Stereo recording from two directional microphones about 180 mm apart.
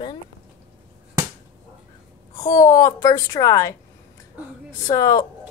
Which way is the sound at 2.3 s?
20° left (ahead or behind).